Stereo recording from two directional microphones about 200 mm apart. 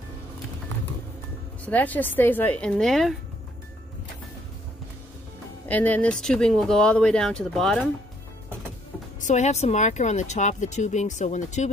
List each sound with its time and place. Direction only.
1.7 s a woman's voice: 10° left (ahead or behind)
5.7 s speech: 10° left (ahead or behind)
9.2 s speech: 35° left (ahead or behind)